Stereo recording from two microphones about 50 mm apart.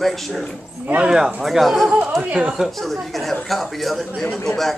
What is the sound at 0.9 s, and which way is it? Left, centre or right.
A man's voice, centre.